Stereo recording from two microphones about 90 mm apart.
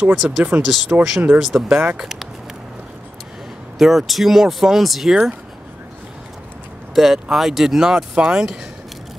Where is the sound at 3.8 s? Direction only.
Centre (ahead or behind).